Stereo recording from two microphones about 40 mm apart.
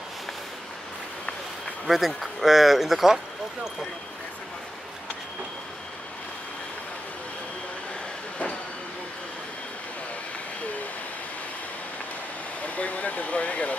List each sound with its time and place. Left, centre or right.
1.9 s speech: centre
12.6 s speech: left